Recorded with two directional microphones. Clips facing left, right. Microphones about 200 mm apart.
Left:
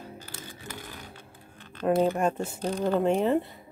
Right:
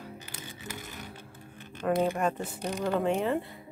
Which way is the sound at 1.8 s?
25° left (ahead or behind).